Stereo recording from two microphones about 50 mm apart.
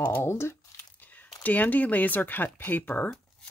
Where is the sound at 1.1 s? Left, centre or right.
Left.